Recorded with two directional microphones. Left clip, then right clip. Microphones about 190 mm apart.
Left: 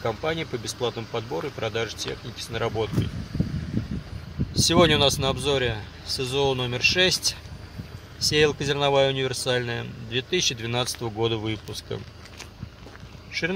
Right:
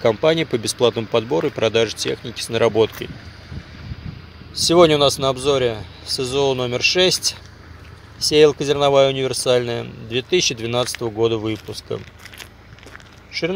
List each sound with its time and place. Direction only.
0.0 s speech: 40° right (ahead or behind)
4.6 s speech: 20° right (ahead or behind)
13.3 s speech: 20° right (ahead or behind)